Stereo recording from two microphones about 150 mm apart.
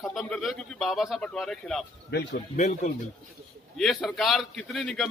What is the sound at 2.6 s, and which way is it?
Speech, 55° left (ahead or behind).